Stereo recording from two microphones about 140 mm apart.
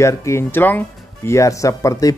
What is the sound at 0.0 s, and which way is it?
Speech, 20° left (ahead or behind).